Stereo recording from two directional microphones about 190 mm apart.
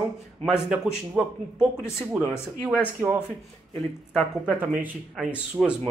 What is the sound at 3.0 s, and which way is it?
A man's voice, 10° right (ahead or behind).